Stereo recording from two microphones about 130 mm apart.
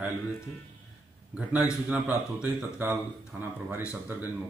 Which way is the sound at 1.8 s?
15° right (ahead or behind).